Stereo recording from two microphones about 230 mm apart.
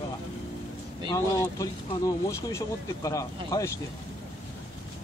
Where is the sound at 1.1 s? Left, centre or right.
Centre.